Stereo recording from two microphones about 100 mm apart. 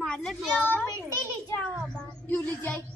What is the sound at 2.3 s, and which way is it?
Child singing, 20° left (ahead or behind).